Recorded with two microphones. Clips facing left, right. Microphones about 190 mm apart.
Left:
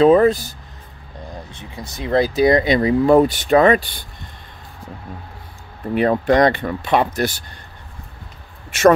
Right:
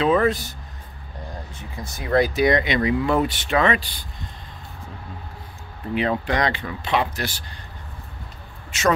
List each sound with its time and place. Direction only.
0.0 s speech: 35° left (ahead or behind)
2.0 s speech: 25° left (ahead or behind); by 3.8 s 40° left (ahead or behind)
5.9 s speech: 50° left (ahead or behind)